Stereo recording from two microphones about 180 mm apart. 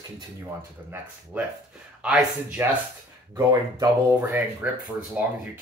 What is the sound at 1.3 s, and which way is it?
Speech, 10° right (ahead or behind).